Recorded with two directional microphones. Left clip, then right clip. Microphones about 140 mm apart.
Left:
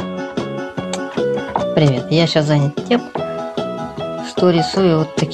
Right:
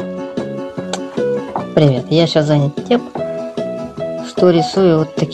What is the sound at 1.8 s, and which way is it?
Speech, 15° right (ahead or behind).